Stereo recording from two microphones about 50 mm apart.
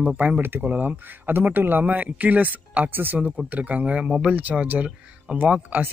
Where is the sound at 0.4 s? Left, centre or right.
Right.